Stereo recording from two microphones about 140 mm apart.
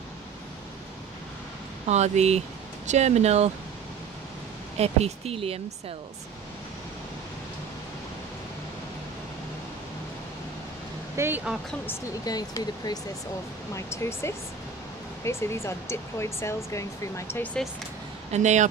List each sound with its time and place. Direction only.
1.9 s speech: 55° right (ahead or behind)
4.7 s speech: 45° right (ahead or behind)
11.1 s speech: 15° right (ahead or behind)
12.3 s speech: 25° left (ahead or behind)
18.3 s speech: 55° right (ahead or behind)